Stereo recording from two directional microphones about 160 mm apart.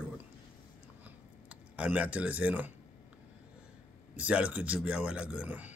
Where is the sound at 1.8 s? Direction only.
10° right (ahead or behind).